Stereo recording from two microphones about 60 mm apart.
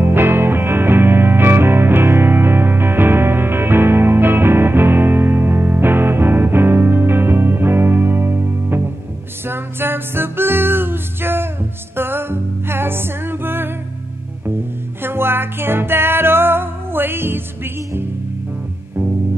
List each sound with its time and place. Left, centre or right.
0.0 s music: right
15.0 s music: right